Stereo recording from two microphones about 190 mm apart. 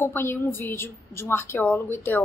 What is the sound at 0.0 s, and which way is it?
A woman's voice, 10° left (ahead or behind).